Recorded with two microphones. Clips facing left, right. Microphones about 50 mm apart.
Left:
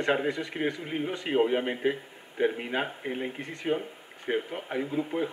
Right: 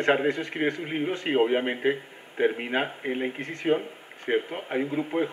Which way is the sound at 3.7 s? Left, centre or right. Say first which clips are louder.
Right 5 dB; right.